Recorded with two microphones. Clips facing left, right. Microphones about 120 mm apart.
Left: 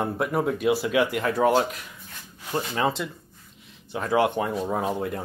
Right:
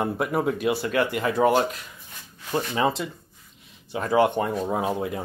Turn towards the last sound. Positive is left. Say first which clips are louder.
# right 1 dB
turn(degrees=-5)  # may be behind; listen again after turning